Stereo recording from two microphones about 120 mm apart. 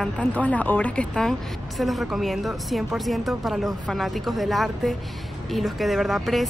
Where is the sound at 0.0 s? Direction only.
10° left (ahead or behind).